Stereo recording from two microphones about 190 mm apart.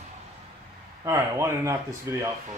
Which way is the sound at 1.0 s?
15° right (ahead or behind).